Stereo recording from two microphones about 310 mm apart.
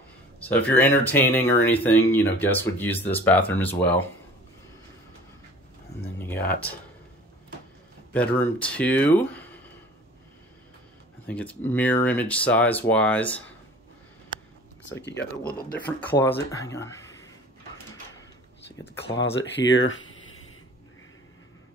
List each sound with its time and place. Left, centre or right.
0.4 s speech: centre
6.1 s a sound: centre
8.1 s speech: centre
11.2 s speech: centre
14.8 s speech: left
15.8 s speech: centre
19.5 s speech: left